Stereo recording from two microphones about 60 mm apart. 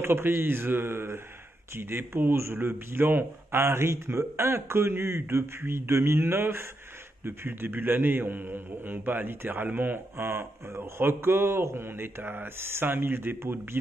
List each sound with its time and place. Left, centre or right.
0.0 s a man's voice: right